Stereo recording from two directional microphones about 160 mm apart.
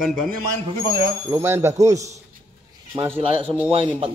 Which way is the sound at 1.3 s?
15° right (ahead or behind).